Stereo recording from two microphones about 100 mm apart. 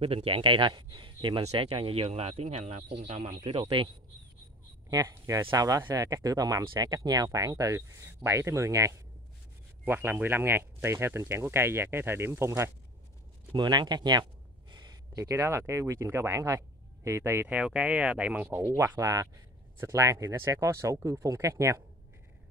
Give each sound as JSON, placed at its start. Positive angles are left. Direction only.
{"t": 0.0, "sound": "speech", "side_deg": -70}
{"t": 1.4, "sound": "speech", "side_deg": -90}
{"t": 3.8, "sound": "speech", "side_deg": -65}
{"t": 4.8, "sound": "speech", "side_deg": -35}
{"t": 9.8, "sound": "speech", "side_deg": -20}
{"t": 13.5, "sound": "speech", "side_deg": -45}
{"t": 14.7, "sound": "a sound", "side_deg": -45}
{"t": 15.1, "sound": "speech", "side_deg": -30}
{"t": 17.6, "sound": "speech", "side_deg": -10}
{"t": 18.9, "sound": "speech", "side_deg": -35}